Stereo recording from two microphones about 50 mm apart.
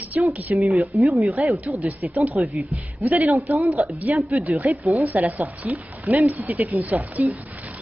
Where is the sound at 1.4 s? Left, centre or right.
Right.